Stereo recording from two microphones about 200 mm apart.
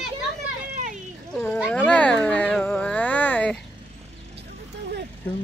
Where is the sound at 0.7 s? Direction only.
40° right (ahead or behind).